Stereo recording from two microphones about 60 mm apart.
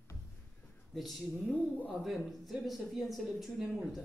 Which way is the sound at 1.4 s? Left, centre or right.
Left.